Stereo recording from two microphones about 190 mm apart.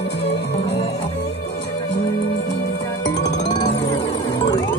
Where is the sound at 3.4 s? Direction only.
35° left (ahead or behind).